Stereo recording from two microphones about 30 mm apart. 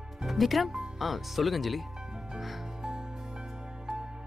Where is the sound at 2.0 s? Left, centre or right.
Right.